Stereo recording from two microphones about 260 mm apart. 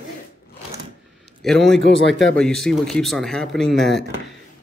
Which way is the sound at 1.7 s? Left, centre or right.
Left.